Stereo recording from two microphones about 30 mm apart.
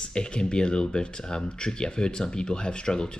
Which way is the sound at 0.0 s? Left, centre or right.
Left.